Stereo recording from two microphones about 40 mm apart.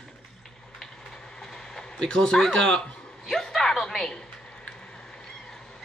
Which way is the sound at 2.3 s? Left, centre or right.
Centre.